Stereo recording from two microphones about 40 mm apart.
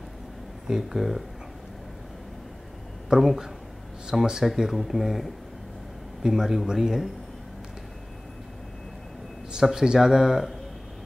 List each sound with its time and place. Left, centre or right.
0.7 s speech: centre
3.2 s speech: centre
9.7 s speech: centre